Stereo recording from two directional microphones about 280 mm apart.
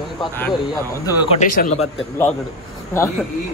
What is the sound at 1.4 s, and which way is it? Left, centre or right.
Speech, left.